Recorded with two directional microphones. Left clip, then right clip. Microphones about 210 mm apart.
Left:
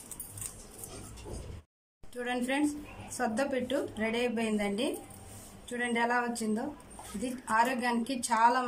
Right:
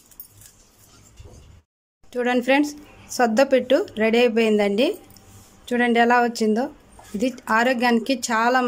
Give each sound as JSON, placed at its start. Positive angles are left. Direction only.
{"t": 2.1, "sound": "a woman's voice", "side_deg": -40}